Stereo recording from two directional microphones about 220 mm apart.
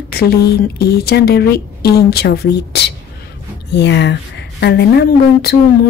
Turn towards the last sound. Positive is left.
turn(degrees=45)  # may be behind; listen again after turning